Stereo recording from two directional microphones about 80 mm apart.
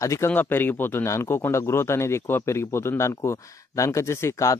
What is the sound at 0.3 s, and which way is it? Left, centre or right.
Speech, left.